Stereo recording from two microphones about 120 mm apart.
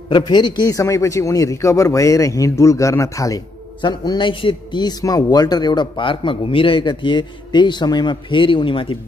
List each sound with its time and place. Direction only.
0.1 s speech: 35° left (ahead or behind)